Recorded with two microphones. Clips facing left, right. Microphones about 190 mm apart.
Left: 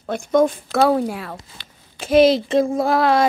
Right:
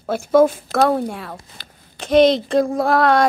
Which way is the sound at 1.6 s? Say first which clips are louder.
Right 2 dB; 40° right (ahead or behind).